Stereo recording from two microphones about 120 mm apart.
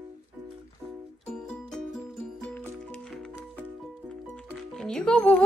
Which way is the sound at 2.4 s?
15° left (ahead or behind).